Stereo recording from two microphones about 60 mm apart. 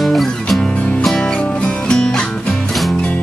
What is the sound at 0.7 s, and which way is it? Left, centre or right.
Music, left.